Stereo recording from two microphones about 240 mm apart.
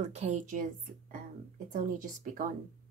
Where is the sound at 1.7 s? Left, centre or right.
Right.